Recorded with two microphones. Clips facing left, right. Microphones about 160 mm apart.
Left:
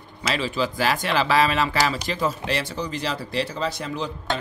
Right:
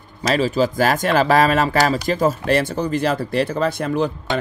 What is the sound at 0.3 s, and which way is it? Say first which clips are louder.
Speech: right 7 dB; 40° right (ahead or behind).